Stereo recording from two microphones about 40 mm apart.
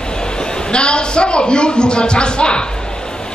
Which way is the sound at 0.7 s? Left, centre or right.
Left.